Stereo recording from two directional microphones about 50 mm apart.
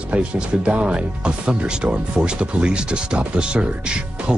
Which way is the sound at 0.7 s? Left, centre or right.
Right.